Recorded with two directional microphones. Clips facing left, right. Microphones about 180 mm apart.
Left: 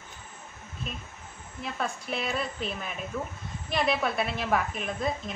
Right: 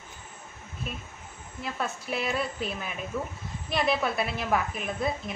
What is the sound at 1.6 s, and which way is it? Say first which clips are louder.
A woman's voice: even; centre (ahead or behind).